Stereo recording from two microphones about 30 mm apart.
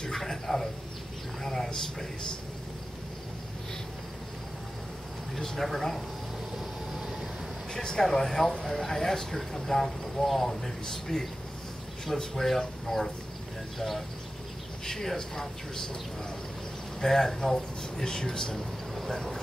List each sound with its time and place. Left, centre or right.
0.1 s a sound: centre
5.6 s speech: centre
6.6 s vehicle: centre
7.7 s a sound: left
8.0 s speech: centre
17.0 s speech: centre
18.0 s speech: left
18.9 s speech: centre